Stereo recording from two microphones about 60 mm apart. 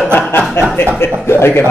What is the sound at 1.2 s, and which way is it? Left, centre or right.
Speech, left.